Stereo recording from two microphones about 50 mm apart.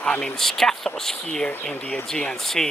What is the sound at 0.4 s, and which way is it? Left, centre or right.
Speech, centre.